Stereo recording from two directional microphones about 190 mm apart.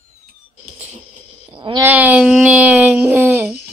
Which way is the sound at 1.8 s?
10° right (ahead or behind).